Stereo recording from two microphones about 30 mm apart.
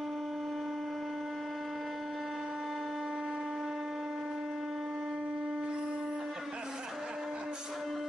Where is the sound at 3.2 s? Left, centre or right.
Right; by 4.2 s centre.